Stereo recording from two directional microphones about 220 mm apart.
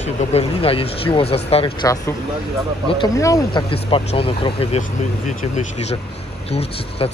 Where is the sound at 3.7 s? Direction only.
25° left (ahead or behind).